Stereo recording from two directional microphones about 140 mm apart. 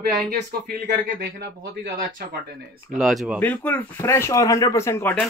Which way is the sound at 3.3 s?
15° left (ahead or behind).